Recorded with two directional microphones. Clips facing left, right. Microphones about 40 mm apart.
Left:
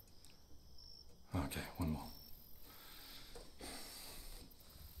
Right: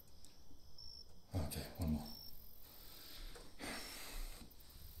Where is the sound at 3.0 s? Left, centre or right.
Centre.